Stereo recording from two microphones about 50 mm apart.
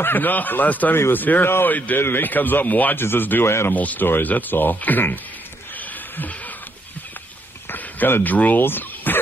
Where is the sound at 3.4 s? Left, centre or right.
Left.